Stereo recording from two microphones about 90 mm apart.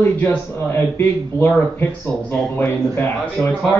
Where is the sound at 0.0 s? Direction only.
20° left (ahead or behind).